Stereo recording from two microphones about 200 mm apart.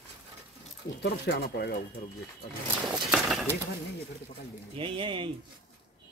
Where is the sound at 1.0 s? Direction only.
55° left (ahead or behind).